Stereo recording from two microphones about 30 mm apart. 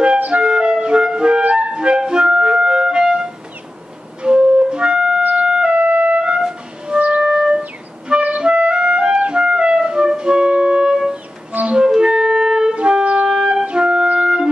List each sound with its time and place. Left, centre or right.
0.3 s music: right
1.4 s music: right
1.7 s music: right
4.2 s flute: right
4.6 s music: right
5.9 s music: right
7.2 s music: right
8.4 s clarinet: right
9.3 s music: right
10.9 s music: right
12.7 s wind instrument: right
13.3 s music: right
14.0 s music: right